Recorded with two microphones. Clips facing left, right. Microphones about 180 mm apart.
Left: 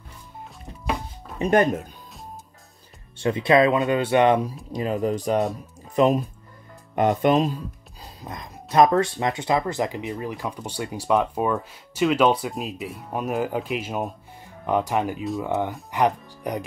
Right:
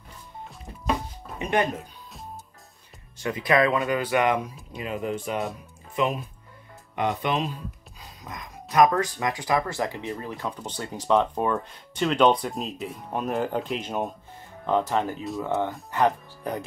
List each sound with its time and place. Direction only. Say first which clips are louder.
1.4 s speech: left 6 dB; 45° left (ahead or behind)
3.2 s speech: left 4 dB; 25° left (ahead or behind); by 7.5 s 45° left (ahead or behind)
8.2 s speech: left 3 dB; 30° left (ahead or behind); by 16.6 s 15° left (ahead or behind)